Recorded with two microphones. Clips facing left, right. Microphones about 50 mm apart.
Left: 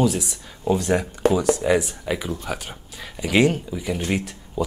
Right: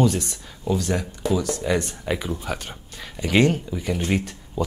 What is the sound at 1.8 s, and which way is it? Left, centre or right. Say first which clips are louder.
Speech: even; centre.